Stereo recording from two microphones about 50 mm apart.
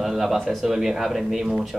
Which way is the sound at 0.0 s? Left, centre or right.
Centre.